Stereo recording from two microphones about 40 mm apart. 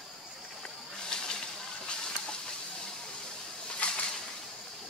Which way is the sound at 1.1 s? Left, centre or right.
Left.